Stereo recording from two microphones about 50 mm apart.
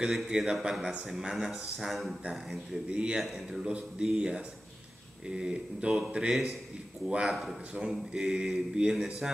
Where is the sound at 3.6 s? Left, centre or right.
Centre.